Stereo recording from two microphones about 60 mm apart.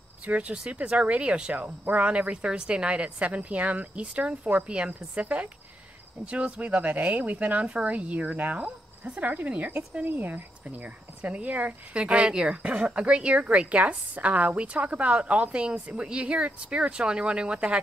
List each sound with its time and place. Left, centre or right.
0.2 s speech: right